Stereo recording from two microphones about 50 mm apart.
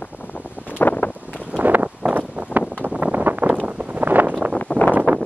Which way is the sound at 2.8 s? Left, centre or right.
Right.